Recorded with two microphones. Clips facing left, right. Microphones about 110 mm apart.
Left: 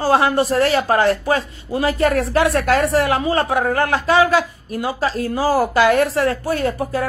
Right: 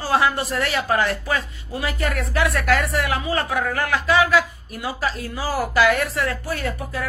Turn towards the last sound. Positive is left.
turn(degrees=35)  # may be behind; listen again after turning